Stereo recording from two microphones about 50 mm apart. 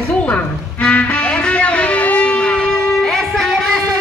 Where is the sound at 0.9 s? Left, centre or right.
Left; by 3.5 s centre.